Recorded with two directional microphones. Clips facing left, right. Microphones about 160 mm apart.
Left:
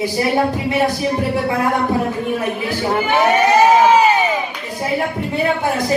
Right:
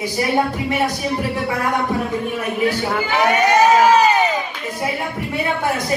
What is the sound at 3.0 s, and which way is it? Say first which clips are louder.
Crowd: left 3 dB; 25° left (ahead or behind).